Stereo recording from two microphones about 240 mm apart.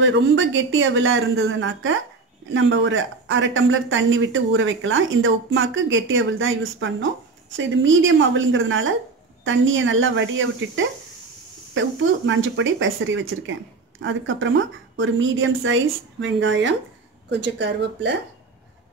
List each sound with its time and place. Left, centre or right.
0.0 s speech: right